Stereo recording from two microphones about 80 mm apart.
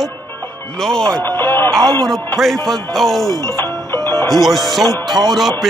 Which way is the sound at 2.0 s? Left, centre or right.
Centre.